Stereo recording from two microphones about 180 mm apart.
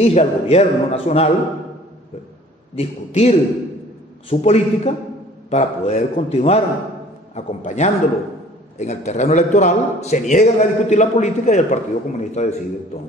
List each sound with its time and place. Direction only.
0.0 s a man's voice: 35° left (ahead or behind)
2.7 s a man's voice: 35° left (ahead or behind)